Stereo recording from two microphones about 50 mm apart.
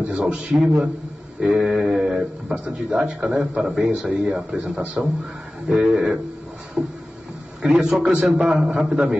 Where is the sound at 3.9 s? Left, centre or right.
Right.